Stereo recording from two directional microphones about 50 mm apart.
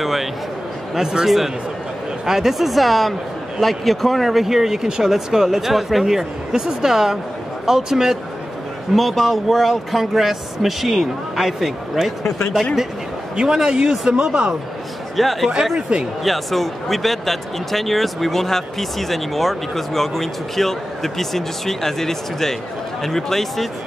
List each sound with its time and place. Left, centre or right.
0.0 s a sound: centre
0.9 s speech: centre
8.9 s speech: centre
13.4 s speech: centre
15.1 s speech: centre